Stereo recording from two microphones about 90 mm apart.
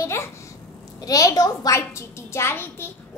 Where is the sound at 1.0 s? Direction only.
45° left (ahead or behind).